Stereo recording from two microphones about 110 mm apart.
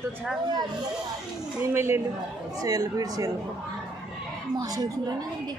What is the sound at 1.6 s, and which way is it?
Speech, 25° right (ahead or behind).